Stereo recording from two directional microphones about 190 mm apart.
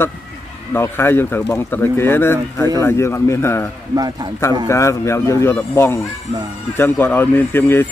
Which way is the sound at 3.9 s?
20° right (ahead or behind).